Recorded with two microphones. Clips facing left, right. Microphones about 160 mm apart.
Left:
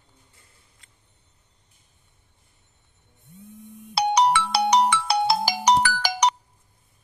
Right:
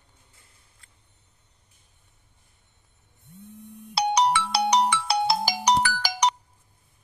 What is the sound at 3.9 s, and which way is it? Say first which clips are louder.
Ringtone: left 2 dB; 55° left (ahead or behind).